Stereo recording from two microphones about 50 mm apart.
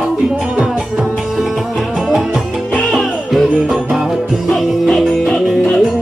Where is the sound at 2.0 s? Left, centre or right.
Centre.